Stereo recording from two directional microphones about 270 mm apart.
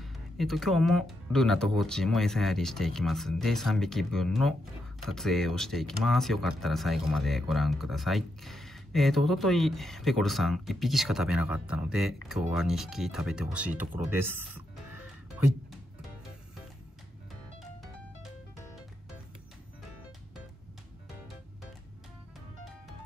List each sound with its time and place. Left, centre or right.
0.0 s speech: centre